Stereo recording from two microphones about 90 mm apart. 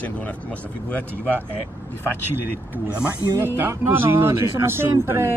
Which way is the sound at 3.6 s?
25° right (ahead or behind).